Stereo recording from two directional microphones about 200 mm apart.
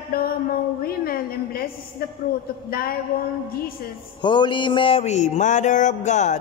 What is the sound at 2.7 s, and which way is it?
Speech, 50° left (ahead or behind).